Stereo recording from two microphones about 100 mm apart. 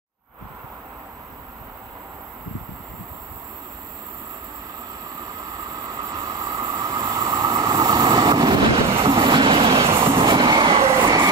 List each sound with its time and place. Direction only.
5.9 s vehicle: 35° right (ahead or behind)
6.9 s train: 40° right (ahead or behind)
8.8 s train: 65° right (ahead or behind)